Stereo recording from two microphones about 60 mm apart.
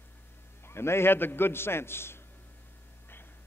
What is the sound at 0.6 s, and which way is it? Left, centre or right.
A man's voice, left.